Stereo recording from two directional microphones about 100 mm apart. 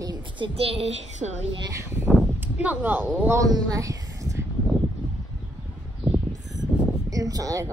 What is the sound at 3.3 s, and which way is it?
Speech, 35° right (ahead or behind).